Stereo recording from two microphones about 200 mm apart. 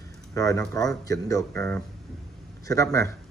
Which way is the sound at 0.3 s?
15° left (ahead or behind).